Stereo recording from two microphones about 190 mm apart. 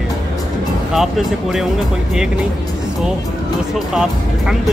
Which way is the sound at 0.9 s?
Centre (ahead or behind).